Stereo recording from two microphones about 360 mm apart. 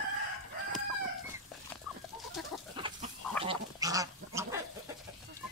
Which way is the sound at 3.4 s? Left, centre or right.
Centre.